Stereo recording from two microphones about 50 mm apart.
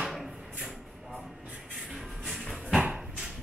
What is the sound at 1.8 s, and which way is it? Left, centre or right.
Music, centre.